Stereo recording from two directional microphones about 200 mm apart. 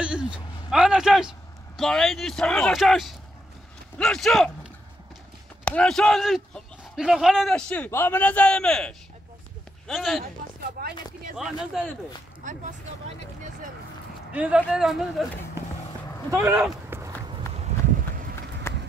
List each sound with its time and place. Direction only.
0.0 s a sound: 5° right (ahead or behind)
1.8 s a man's voice: 5° left (ahead or behind)
5.7 s a man's voice: 5° left (ahead or behind)
10.8 s speech: 50° right (ahead or behind)
11.3 s a man's voice: centre (ahead or behind)
12.4 s speech: 40° right (ahead or behind)
14.3 s a man's voice: 5° right (ahead or behind)
16.3 s speech: 15° right (ahead or behind)
16.9 s run: 10° right (ahead or behind)
18.7 s run: 15° left (ahead or behind)